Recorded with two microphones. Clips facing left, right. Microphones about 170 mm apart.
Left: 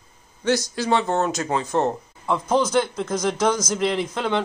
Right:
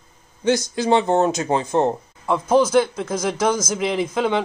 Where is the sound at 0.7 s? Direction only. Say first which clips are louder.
Right 4 dB; 20° right (ahead or behind).